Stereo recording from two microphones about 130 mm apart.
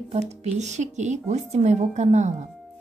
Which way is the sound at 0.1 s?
60° right (ahead or behind).